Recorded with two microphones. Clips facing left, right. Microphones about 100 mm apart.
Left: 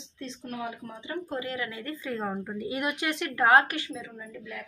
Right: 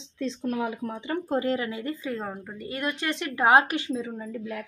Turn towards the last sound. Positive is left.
turn(degrees=-40)  # may be behind; listen again after turning